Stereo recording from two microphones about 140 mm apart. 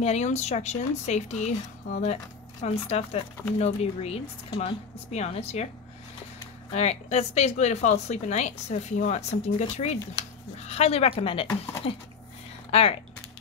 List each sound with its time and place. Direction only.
0.0 s speech: 55° left (ahead or behind)
6.7 s speech: 50° left (ahead or behind)